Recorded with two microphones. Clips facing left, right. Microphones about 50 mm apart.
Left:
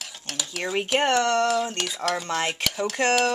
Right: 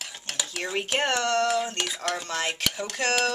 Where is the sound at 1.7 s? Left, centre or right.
Centre.